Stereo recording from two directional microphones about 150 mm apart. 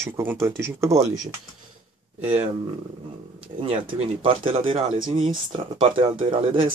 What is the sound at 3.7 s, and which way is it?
Speech, 40° right (ahead or behind).